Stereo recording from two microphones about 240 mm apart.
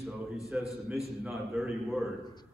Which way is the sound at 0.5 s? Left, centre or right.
Centre.